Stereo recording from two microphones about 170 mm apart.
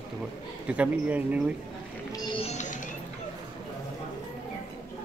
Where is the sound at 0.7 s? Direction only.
10° right (ahead or behind).